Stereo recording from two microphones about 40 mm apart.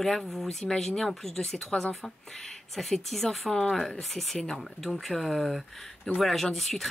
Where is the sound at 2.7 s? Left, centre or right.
Centre.